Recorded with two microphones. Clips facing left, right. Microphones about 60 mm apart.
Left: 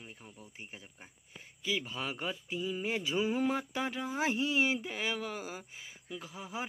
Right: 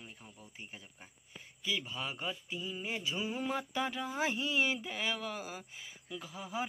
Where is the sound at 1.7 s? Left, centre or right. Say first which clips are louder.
Left 2 dB; left.